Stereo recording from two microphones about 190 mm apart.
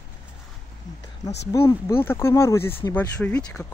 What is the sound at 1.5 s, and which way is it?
Speech, 15° left (ahead or behind).